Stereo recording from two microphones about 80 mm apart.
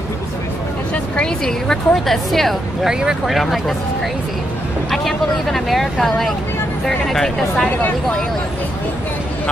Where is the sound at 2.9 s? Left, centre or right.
Centre.